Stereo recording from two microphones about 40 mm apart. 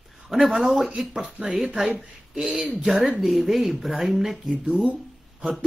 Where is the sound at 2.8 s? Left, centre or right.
Centre.